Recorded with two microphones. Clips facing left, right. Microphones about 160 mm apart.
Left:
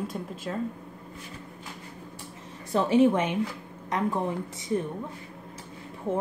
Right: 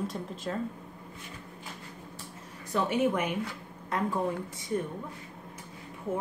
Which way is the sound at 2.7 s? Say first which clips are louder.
Left 6 dB; 30° left (ahead or behind).